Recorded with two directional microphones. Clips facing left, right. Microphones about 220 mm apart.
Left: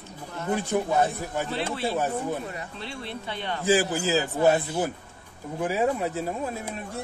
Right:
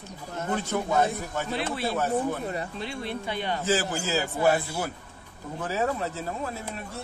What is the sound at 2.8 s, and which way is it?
Speech, 15° right (ahead or behind).